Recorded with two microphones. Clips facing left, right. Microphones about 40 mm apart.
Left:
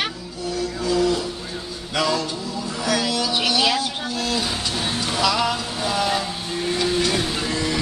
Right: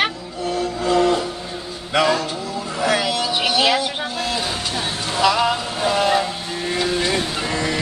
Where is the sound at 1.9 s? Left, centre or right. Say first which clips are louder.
Right 4 dB; right.